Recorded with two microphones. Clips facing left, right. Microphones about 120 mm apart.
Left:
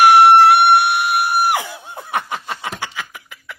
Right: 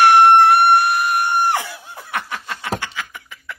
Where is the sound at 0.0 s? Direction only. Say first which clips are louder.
Left 2 dB; 10° left (ahead or behind).